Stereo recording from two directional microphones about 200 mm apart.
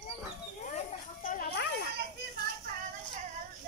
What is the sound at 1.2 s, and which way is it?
Snake, 45° left (ahead or behind).